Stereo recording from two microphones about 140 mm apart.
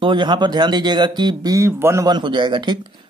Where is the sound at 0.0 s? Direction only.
35° right (ahead or behind); by 2.0 s 15° right (ahead or behind).